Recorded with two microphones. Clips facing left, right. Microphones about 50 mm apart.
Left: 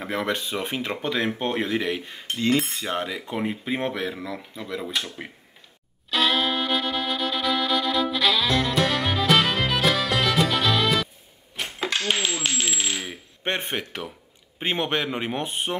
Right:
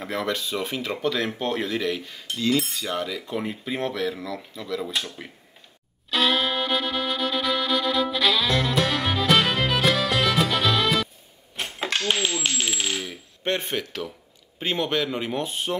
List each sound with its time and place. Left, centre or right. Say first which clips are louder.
0.0 s speech: left 1 dB; centre
6.0 s music: even; centre
12.8 s a sound: right 1 dB; centre
14.6 s speech: even; left